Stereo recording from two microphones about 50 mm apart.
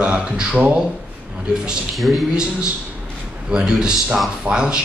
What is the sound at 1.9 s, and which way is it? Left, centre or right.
Speech, centre.